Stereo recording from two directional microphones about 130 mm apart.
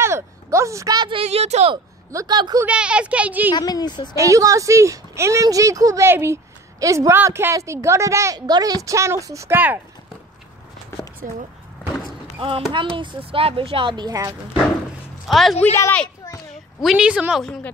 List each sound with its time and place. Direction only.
0.0 s speech: 20° right (ahead or behind)
1.2 s speech: 55° right (ahead or behind)
2.0 s speech: 30° right (ahead or behind)
2.6 s speech: 10° right (ahead or behind)
3.5 s speech: 30° left (ahead or behind)
4.1 s speech: 25° right (ahead or behind)
12.4 s speech: 45° right (ahead or behind); by 14.3 s 30° right (ahead or behind)
15.2 s a woman's voice: centre (ahead or behind)
16.8 s a woman's voice: 5° right (ahead or behind)